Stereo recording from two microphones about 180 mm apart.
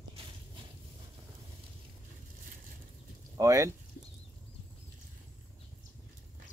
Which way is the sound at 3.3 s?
15° right (ahead or behind).